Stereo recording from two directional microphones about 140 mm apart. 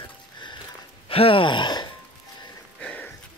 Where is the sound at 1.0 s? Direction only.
40° left (ahead or behind).